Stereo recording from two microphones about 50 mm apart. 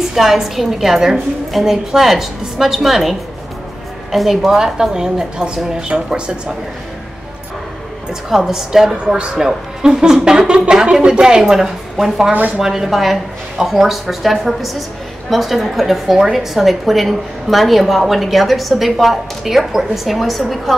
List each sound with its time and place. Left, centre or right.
0.1 s a woman's voice: centre
8.1 s a woman's voice: centre
9.0 s speech: centre
9.3 s a woman's voice: centre
9.8 s a woman's voice: centre
12.3 s speech: right
12.5 s a woman's voice: centre